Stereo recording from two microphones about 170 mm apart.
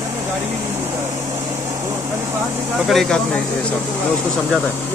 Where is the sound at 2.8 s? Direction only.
Centre (ahead or behind).